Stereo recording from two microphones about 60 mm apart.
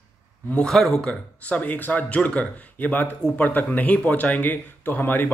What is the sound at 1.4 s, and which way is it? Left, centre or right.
Speech, left.